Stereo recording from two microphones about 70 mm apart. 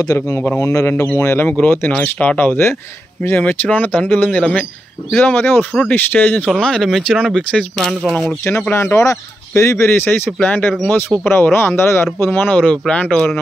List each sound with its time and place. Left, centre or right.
0.0 s speech: left
1.9 s speech: centre
5.1 s speech: left
6.5 s speech: centre
8.9 s speech: left; by 13.3 s centre